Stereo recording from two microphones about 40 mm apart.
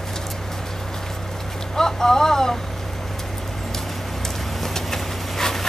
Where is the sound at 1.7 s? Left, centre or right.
Centre.